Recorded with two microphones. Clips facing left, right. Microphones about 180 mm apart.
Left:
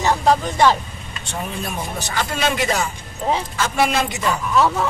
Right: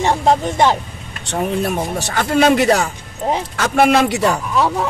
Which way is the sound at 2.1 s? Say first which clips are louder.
Right 9 dB; 60° right (ahead or behind).